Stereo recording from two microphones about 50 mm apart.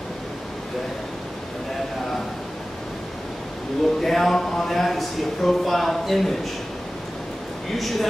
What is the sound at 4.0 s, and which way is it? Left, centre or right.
Speech, centre.